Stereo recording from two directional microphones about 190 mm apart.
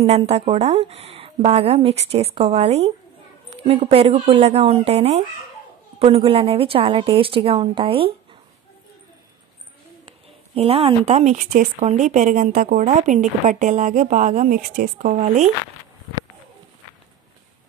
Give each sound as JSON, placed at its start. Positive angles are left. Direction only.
{"t": 0.0, "sound": "a woman's voice", "side_deg": -35}
{"t": 10.5, "sound": "speech", "side_deg": -30}